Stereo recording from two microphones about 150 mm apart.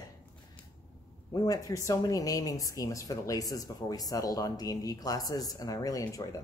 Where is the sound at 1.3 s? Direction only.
25° left (ahead or behind).